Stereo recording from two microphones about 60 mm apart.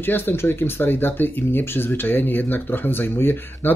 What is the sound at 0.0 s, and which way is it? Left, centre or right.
Speech, left.